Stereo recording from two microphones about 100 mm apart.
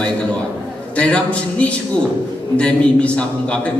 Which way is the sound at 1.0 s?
10° left (ahead or behind).